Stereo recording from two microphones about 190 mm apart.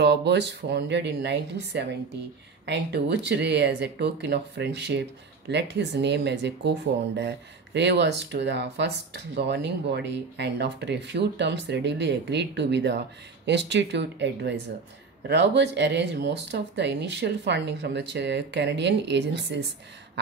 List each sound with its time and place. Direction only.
0.0 s speech: 65° right (ahead or behind)